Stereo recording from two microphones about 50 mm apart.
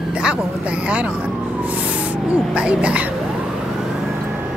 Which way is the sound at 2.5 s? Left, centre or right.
Centre.